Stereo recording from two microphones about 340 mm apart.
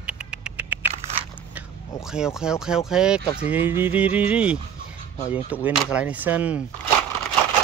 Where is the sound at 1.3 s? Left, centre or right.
Centre.